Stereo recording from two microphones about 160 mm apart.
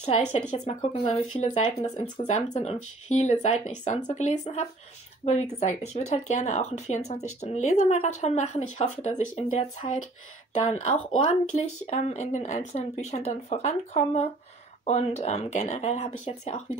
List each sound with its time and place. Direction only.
0.7 s speech: 30° left (ahead or behind)